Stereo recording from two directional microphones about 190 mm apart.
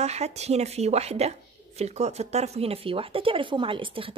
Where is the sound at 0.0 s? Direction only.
35° right (ahead or behind).